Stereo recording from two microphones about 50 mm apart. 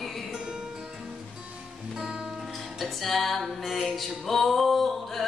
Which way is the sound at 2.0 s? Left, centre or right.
Centre.